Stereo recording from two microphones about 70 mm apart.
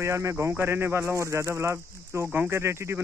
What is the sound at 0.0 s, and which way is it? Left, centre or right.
Speech, right.